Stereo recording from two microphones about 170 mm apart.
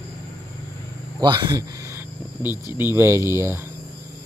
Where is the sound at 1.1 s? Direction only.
25° right (ahead or behind).